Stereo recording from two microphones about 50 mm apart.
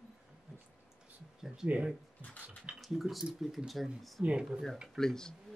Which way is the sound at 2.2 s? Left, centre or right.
Left.